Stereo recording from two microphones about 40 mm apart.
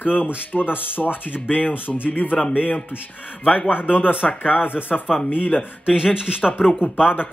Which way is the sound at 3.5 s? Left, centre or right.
Left.